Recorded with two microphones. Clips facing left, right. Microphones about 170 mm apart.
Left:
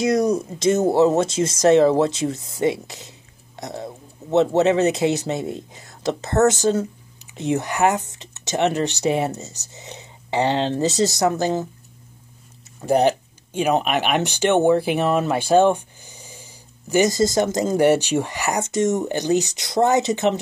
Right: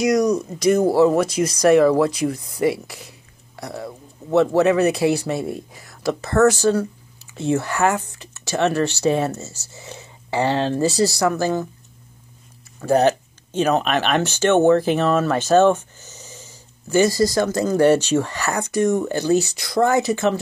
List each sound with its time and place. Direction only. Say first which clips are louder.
0.0 s speech: right 1 dB; 30° left (ahead or behind)
12.8 s speech: right 1 dB; 15° left (ahead or behind)